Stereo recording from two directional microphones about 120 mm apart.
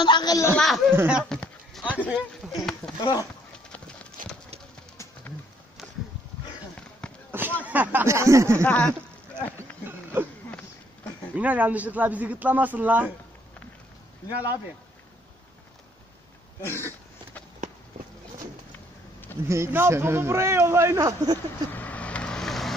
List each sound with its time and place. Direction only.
0.0 s a man's voice: 35° left (ahead or behind)
0.6 s speech: 5° left (ahead or behind)
0.9 s speech: 10° right (ahead or behind)
1.3 s a sound: 5° left (ahead or behind)
2.0 s speech: 10° right (ahead or behind)
3.0 s speech: 35° left (ahead or behind)
3.7 s clip-clop: 10° left (ahead or behind)
7.2 s a sound: 15° right (ahead or behind)
7.6 s speech: 15° right (ahead or behind)
8.6 s a sound: 10° left (ahead or behind)
11.3 s speech: 10° right (ahead or behind)
16.6 s throat clearing: 20° left (ahead or behind)
19.4 s speech: 20° right (ahead or behind)
21.7 s vehicle: 15° left (ahead or behind)